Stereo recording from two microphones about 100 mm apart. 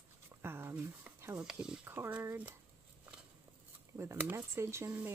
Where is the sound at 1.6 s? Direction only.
10° right (ahead or behind).